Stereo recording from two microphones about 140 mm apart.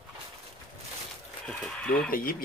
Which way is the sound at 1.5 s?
5° left (ahead or behind).